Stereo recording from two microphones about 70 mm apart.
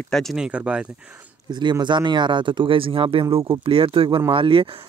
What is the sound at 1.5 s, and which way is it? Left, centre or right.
Speech, right.